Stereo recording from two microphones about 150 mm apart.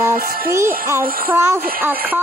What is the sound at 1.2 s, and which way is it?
Music, 15° right (ahead or behind).